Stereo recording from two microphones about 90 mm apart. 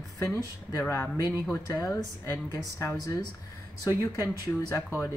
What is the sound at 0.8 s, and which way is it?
Speech, 25° left (ahead or behind).